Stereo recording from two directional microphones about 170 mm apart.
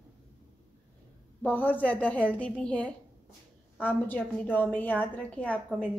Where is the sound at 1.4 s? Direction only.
10° left (ahead or behind).